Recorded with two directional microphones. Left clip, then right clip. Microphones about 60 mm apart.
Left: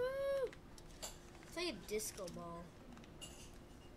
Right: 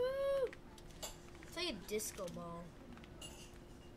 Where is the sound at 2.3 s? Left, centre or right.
Centre.